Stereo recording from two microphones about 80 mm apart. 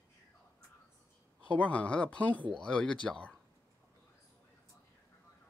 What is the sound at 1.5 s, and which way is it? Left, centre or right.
Speech, centre.